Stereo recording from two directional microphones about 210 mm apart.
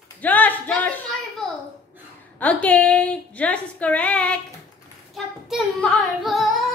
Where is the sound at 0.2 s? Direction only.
10° left (ahead or behind).